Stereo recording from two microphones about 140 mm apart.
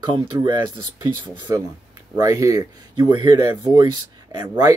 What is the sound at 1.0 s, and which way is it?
Speech, 30° right (ahead or behind).